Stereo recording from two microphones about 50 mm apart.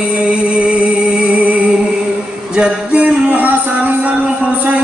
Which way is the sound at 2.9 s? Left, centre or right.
Right.